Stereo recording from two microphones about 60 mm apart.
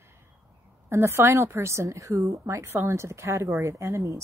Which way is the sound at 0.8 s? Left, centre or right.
Right.